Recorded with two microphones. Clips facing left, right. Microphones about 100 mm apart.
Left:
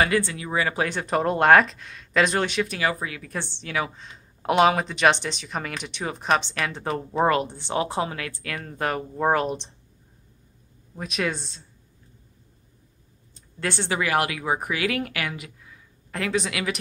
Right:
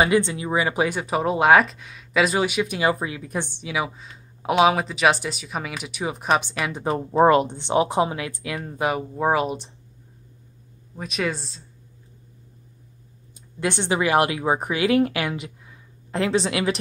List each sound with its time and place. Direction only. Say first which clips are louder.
0.0 s speech: right 3 dB; 20° right (ahead or behind)
11.0 s speech: right 1 dB; centre (ahead or behind)
13.6 s speech: right 3 dB; 20° right (ahead or behind)